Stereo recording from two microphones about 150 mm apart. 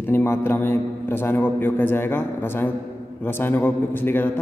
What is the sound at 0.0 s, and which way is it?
A man's voice, 15° left (ahead or behind).